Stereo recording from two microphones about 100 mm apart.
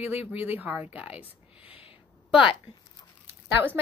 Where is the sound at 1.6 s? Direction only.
70° left (ahead or behind).